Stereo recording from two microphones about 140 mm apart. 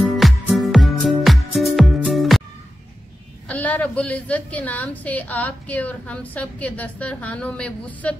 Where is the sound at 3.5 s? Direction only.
10° left (ahead or behind).